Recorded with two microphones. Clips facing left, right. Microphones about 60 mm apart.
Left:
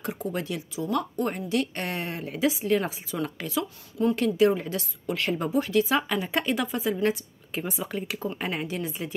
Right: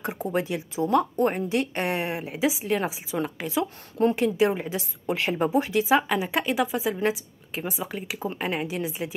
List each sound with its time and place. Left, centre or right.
0.0 s a woman's voice: right; by 9.1 s centre